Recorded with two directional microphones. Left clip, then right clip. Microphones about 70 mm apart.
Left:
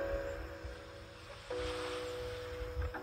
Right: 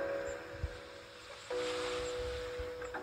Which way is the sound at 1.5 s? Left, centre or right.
Right.